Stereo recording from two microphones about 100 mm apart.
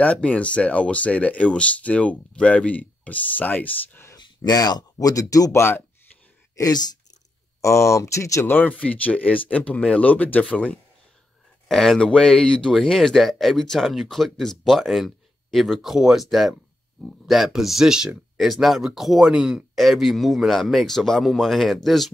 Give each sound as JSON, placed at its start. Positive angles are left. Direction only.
{"t": 0.0, "sound": "speech", "side_deg": 15}
{"t": 4.2, "sound": "speech", "side_deg": 40}
{"t": 6.5, "sound": "speech", "side_deg": 40}
{"t": 7.6, "sound": "speech", "side_deg": 30}
{"t": 11.6, "sound": "speech", "side_deg": 0}